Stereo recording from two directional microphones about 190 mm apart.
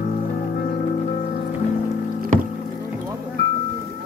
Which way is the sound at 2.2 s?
50° right (ahead or behind).